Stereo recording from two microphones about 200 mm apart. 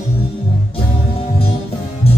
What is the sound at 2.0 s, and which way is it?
Music, 30° left (ahead or behind).